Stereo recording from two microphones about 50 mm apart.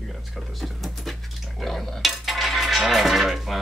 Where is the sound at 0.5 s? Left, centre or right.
Centre.